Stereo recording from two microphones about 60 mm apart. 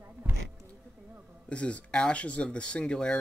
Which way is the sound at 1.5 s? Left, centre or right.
Centre.